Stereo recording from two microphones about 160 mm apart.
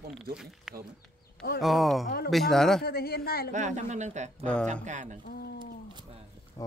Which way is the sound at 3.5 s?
50° right (ahead or behind).